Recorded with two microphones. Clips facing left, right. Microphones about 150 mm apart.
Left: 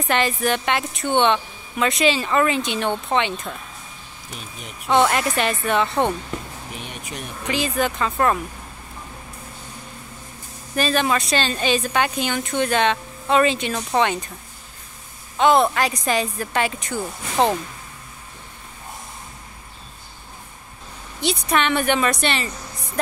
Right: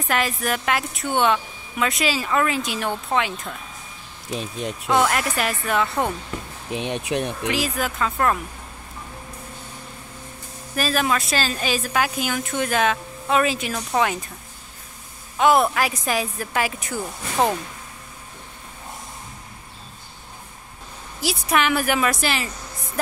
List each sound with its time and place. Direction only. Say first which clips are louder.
0.0 s a woman's voice: left 3 dB; centre (ahead or behind)
4.3 s speech: right 10 dB; 90° right
4.9 s a woman's voice: left 3 dB; centre (ahead or behind)
6.7 s speech: right 12 dB; 90° right
7.5 s a woman's voice: left 7 dB; centre (ahead or behind)
10.8 s a woman's voice: left 2 dB; 5° right (ahead or behind)
15.3 s a woman's voice: left 1 dB; 5° right (ahead or behind)
21.2 s a woman's voice: left 1 dB; 5° right (ahead or behind)